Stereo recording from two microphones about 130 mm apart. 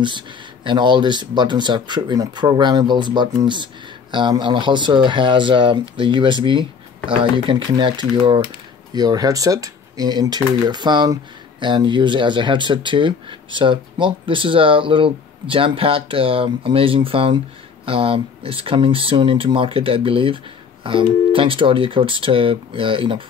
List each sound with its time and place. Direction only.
0.7 s speech: 35° right (ahead or behind)